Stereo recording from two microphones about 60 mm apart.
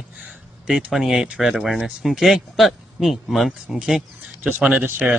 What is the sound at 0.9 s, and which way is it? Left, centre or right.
Speech, centre.